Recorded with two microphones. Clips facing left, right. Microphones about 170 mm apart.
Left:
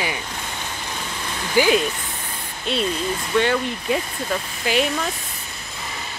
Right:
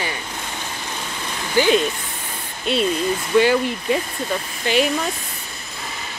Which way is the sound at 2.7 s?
Centre (ahead or behind).